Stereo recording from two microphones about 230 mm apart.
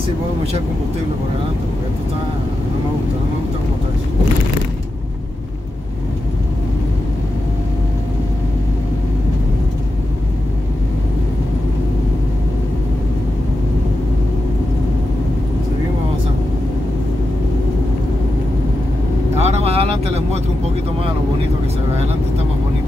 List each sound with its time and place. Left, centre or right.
19.3 s vehicle: right